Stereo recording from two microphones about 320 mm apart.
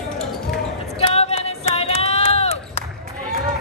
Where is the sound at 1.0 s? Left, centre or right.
Centre.